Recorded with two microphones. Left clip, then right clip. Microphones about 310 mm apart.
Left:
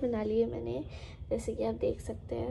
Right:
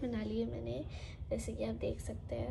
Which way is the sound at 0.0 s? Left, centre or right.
Centre.